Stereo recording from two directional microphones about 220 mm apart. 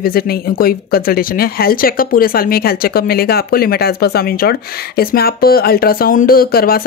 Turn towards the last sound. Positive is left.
turn(degrees=40)  # may be behind; listen again after turning